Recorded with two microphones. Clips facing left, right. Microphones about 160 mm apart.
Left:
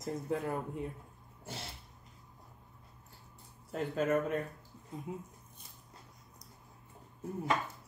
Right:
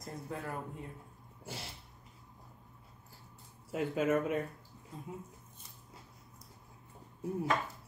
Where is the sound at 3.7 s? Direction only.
10° right (ahead or behind).